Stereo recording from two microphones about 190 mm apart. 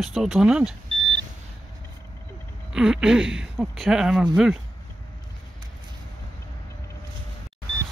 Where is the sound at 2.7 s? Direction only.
5° right (ahead or behind).